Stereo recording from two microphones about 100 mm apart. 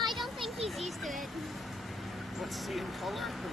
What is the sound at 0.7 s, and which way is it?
Vehicle, centre (ahead or behind).